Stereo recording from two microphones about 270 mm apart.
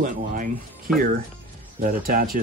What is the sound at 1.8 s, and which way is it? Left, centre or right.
Speech, right.